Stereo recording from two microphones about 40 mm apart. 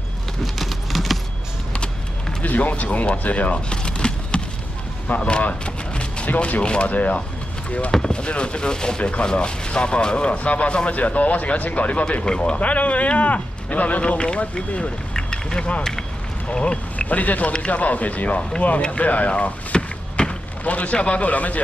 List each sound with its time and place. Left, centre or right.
0.6 s clip-clop: centre
2.4 s speech: left
3.7 s a sound: left
5.1 s speech: left
6.6 s speech: left
6.9 s speech: left
8.1 s speech: left
12.5 s speech: left
16.5 s vehicle: left
17.1 s speech: left
18.9 s a sound: left
20.6 s speech: left